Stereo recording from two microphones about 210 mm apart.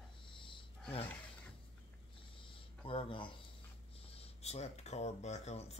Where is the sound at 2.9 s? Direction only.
25° left (ahead or behind).